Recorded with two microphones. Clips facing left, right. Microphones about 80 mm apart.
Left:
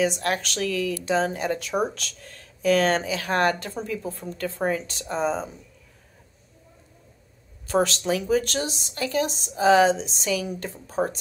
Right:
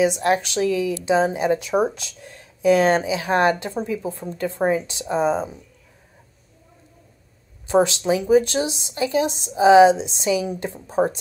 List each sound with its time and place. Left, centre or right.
0.0 s speech: centre
7.6 s a woman's voice: centre